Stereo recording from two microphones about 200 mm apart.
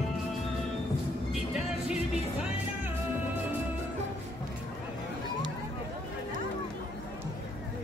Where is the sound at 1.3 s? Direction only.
Centre (ahead or behind).